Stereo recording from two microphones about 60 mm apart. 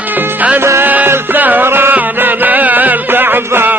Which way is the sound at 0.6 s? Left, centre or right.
Right.